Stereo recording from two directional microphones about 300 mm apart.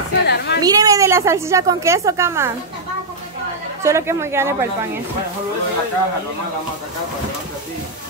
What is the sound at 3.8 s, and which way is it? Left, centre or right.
Speech, centre.